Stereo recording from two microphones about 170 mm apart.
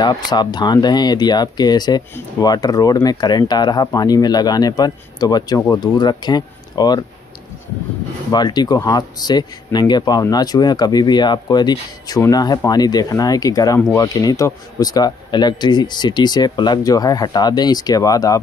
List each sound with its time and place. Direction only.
0.0 s speech: 25° left (ahead or behind)
8.3 s speech: 25° left (ahead or behind)